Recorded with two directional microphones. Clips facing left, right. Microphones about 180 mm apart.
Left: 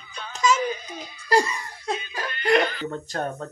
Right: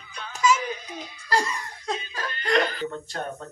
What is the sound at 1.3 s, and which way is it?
Laughter, 15° left (ahead or behind).